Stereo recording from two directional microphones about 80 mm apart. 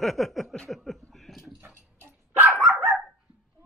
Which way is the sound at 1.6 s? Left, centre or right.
Right.